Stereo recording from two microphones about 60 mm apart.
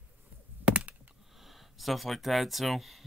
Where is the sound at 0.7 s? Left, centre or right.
Right.